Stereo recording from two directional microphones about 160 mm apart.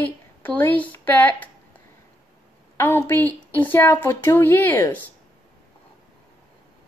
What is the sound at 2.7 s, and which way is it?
A woman's voice, 15° left (ahead or behind).